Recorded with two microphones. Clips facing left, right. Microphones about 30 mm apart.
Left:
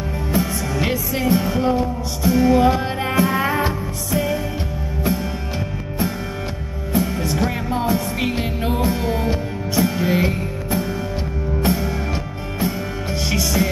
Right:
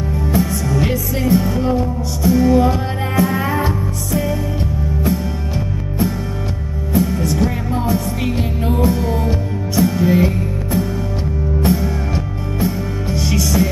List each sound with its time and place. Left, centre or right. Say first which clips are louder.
0.3 s music: right 3 dB; centre
6.9 s music: right 3 dB; centre